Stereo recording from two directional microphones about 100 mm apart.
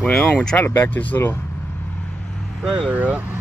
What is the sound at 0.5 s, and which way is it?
Speech, 20° left (ahead or behind).